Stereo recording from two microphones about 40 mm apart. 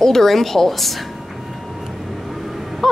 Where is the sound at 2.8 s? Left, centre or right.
Centre.